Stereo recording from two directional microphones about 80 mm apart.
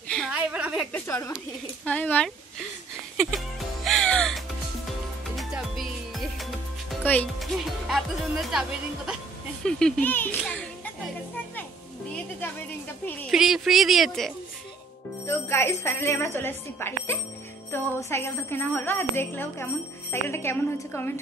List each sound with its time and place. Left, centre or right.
0.3 s a sound: centre
0.9 s speech: left
1.9 s jingle bell: left
3.2 s music: centre
7.0 s music: left
7.3 s speech: centre
9.6 s speech: centre
10.0 s jingle bell: left
12.4 s jingle bell: left
13.3 s speech: centre
15.2 s speech: left
17.6 s jingle bell: left